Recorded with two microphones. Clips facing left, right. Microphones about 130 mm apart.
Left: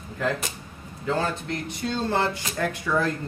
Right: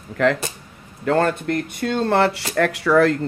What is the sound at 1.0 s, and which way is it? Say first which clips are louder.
Speech: right 7 dB; 60° right (ahead or behind).